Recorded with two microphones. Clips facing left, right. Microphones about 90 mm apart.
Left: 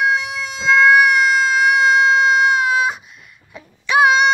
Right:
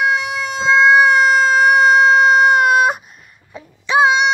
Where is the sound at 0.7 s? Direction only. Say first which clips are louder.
Right 1 dB; 25° right (ahead or behind); by 3.0 s 55° right (ahead or behind).